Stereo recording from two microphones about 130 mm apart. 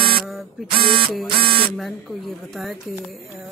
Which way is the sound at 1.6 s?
Centre (ahead or behind).